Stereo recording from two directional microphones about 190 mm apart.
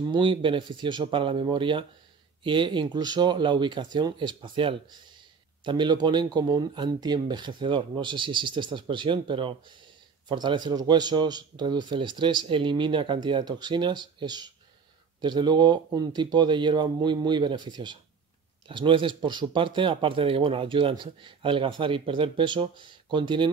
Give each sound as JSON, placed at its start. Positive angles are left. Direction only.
{"t": 0.1, "sound": "speech", "side_deg": -25}